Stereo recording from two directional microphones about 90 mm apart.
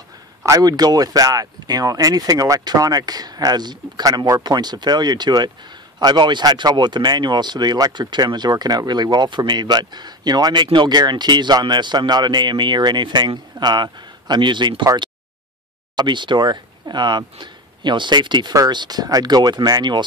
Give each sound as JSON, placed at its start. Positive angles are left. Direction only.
{"t": 0.5, "sound": "speech", "side_deg": -45}
{"t": 16.0, "sound": "speech", "side_deg": -60}